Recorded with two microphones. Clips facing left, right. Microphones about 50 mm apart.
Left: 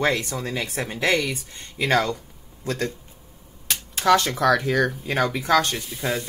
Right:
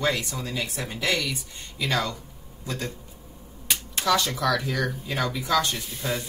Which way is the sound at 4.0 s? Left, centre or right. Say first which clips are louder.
Left 6 dB; left.